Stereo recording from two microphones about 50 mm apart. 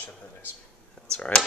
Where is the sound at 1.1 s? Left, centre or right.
Left.